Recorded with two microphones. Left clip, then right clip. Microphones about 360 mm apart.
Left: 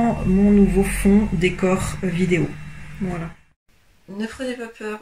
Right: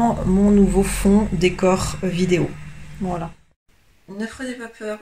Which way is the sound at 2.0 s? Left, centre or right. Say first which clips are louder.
Right 1 dB; right.